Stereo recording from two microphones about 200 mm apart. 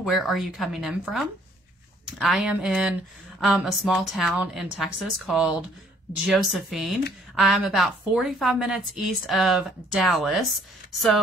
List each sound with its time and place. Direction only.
0.0 s a woman's voice: centre (ahead or behind)